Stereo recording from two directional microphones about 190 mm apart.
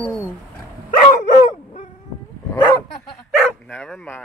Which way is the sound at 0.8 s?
40° left (ahead or behind).